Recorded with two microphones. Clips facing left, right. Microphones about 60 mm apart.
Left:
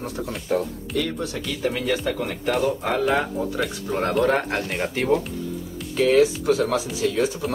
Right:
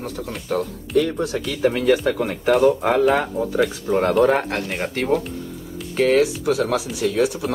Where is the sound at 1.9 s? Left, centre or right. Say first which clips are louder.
Right 5 dB; centre.